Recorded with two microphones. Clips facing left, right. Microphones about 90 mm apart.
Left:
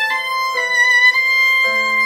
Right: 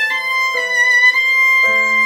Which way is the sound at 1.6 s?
Centre (ahead or behind).